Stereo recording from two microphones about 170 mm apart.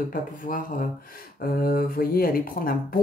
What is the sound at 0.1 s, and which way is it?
Speech, 55° left (ahead or behind).